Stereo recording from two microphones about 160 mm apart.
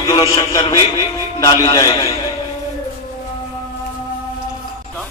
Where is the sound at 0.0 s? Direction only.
25° left (ahead or behind).